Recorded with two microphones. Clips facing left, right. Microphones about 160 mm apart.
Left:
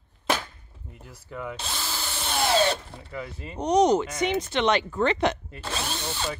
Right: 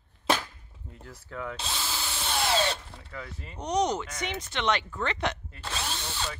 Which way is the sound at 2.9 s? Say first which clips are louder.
Left 5 dB; 10° left (ahead or behind).